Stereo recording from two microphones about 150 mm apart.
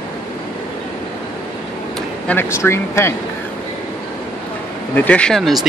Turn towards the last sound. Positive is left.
turn(degrees=0)  # may be behind; listen again after turning